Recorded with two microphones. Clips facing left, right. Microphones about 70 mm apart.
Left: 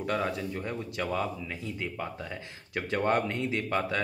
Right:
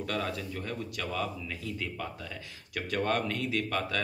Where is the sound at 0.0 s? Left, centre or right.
Left.